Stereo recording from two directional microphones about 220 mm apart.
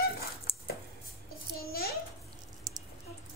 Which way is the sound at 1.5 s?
45° left (ahead or behind).